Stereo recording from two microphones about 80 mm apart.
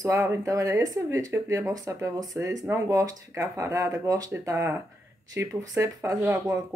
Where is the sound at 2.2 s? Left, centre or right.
Right.